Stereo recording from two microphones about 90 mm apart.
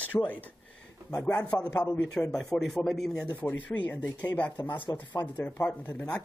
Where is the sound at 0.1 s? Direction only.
30° left (ahead or behind).